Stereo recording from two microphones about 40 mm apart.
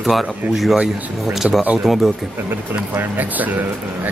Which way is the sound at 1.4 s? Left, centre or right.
Right.